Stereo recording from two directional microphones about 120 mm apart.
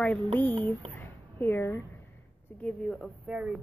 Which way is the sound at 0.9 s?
20° left (ahead or behind).